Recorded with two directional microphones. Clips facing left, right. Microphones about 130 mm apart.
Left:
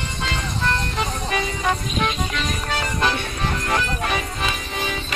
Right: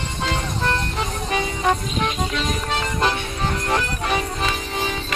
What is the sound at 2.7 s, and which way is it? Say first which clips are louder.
Music: even; 25° right (ahead or behind).